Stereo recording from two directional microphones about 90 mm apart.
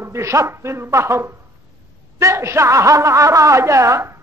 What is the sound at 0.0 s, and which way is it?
A woman's voice, 30° right (ahead or behind).